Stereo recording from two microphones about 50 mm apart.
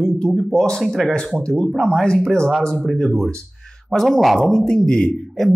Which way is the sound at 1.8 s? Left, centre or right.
Centre.